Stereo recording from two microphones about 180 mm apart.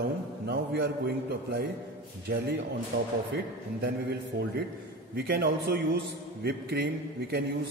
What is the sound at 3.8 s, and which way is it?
A man's voice, 65° right (ahead or behind).